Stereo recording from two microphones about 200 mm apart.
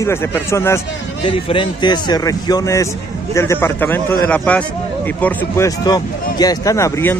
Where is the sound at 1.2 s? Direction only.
25° left (ahead or behind).